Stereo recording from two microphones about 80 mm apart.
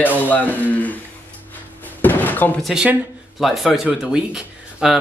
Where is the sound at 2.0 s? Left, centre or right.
Left.